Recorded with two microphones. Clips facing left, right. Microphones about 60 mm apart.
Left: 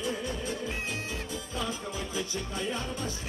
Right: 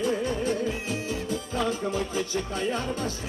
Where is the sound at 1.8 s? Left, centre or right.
Right.